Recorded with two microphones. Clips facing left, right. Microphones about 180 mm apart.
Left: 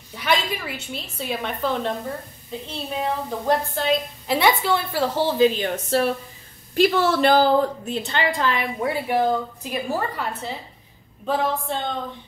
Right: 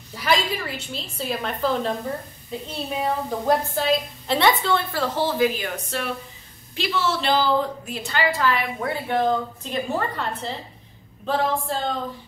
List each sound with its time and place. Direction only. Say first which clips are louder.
0.1 s a woman's voice: right 1 dB; centre (ahead or behind); by 5.5 s 15° left (ahead or behind)
5.6 s a woman's voice: left 7 dB; 35° left (ahead or behind)
6.7 s a woman's voice: left 6 dB; 50° left (ahead or behind)
7.9 s a woman's voice: left 1 dB; 25° left (ahead or behind); by 12.0 s centre (ahead or behind)